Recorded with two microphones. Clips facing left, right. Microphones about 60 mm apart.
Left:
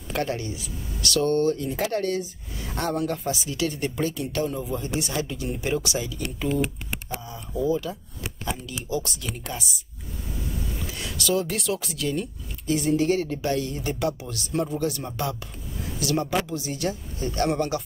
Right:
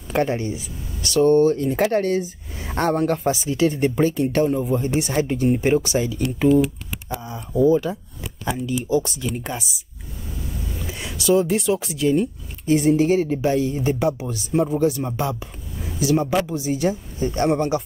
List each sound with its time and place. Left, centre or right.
0.1 s speech: right
1.6 s speech: right
2.0 s speech: right
3.3 s speech: right
7.2 s a sound: right
8.8 s speech: right
10.9 s a sound: centre
12.0 s speech: right
12.8 s speech: centre
17.2 s speech: right